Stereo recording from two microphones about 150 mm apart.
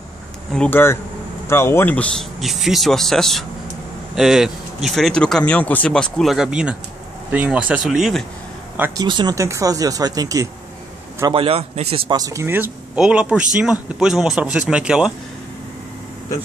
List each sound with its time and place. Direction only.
0.5 s speech: 10° left (ahead or behind)
2.4 s speech: centre (ahead or behind)
8.9 s speech: 30° right (ahead or behind)
11.3 s a man's voice: 40° right (ahead or behind)
12.1 s speech: 25° right (ahead or behind); by 15.1 s 5° right (ahead or behind)